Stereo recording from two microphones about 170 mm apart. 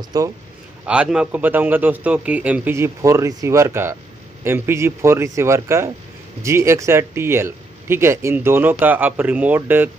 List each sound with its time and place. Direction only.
0.1 s a man's voice: 20° right (ahead or behind)
0.8 s speech: 5° right (ahead or behind)